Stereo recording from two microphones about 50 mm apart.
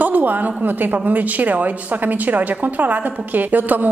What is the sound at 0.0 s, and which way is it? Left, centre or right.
A woman's voice, right.